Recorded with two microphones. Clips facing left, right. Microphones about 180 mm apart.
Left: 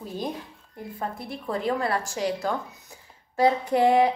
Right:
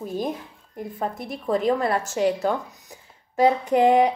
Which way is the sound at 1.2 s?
20° right (ahead or behind).